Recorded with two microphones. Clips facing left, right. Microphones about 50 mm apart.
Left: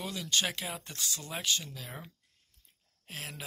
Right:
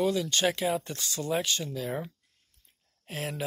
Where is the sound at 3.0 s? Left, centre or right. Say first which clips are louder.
Right 8 dB; centre.